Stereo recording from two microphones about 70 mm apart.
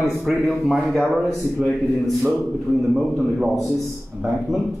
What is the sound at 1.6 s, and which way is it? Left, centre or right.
Speech, right.